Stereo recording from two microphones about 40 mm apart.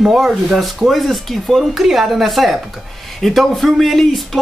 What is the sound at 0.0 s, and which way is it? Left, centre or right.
Speech, centre.